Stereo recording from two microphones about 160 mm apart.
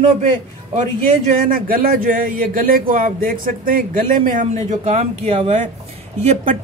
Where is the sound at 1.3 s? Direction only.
60° right (ahead or behind).